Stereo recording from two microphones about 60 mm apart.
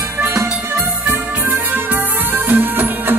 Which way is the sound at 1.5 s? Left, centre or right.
Right.